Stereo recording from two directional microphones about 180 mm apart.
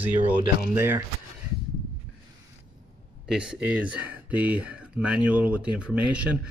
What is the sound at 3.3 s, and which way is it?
Speech, 5° right (ahead or behind).